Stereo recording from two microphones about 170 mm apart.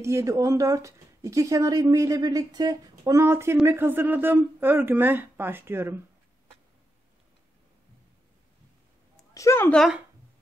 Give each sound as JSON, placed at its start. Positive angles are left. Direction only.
{"t": 0.0, "sound": "speech", "side_deg": -15}
{"t": 9.3, "sound": "a woman's voice", "side_deg": 15}